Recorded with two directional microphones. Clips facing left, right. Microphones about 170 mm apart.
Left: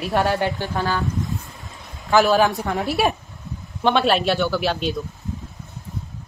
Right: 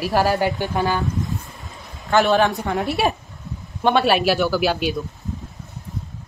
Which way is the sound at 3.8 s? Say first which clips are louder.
Right 1 dB; 5° right (ahead or behind).